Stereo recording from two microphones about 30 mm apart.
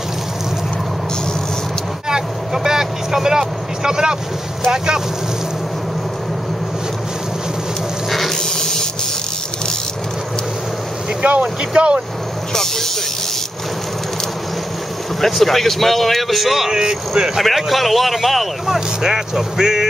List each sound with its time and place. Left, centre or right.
2.0 s vehicle: right
4.6 s speech: right
8.4 s a sound: centre
11.2 s speech: right
12.5 s music: centre
15.1 s speech: centre
16.7 s speech: right
17.4 s speech: centre
18.7 s speech: centre